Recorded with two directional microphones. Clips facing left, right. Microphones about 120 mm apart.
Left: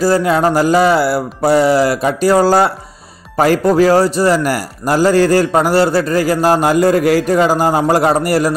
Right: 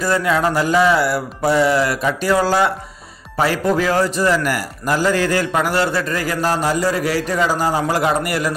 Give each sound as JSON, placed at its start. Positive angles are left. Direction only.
{"t": 0.0, "sound": "a man's voice", "side_deg": 35}
{"t": 6.6, "sound": "a man's voice", "side_deg": 55}